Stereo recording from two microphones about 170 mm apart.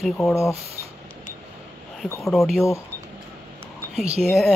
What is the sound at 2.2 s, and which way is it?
Speech, centre (ahead or behind).